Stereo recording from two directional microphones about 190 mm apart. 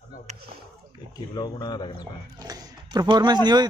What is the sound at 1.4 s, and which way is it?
Speech, 20° left (ahead or behind).